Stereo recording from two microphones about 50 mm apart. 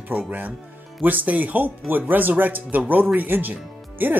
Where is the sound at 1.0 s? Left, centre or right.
Right.